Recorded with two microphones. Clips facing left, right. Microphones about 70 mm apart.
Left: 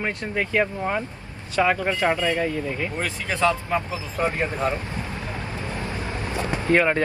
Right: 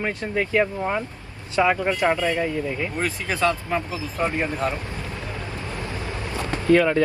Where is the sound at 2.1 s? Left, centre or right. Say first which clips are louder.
Even; left.